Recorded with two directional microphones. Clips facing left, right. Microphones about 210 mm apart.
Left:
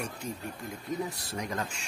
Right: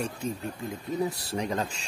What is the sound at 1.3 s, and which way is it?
Speech, 30° right (ahead or behind).